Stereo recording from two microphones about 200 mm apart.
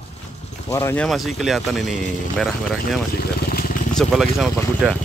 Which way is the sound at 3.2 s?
45° left (ahead or behind).